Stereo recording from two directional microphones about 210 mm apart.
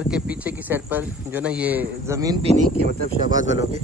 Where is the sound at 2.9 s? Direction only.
40° right (ahead or behind).